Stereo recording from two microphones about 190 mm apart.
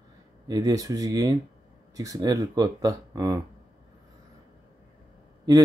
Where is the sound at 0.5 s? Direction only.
20° right (ahead or behind).